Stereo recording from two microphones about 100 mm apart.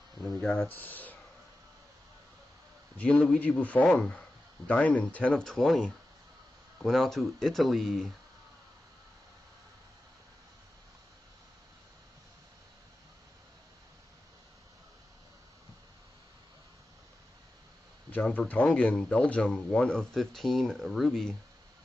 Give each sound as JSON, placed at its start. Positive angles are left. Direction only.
{"t": 0.2, "sound": "a sound", "side_deg": 10}
{"t": 0.6, "sound": "speech", "side_deg": 20}
{"t": 3.0, "sound": "speech", "side_deg": 10}
{"t": 18.1, "sound": "speech", "side_deg": 15}